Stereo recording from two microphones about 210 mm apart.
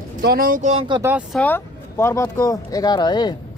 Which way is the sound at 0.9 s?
15° right (ahead or behind).